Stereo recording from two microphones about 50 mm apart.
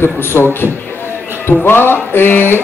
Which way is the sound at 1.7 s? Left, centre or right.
Left.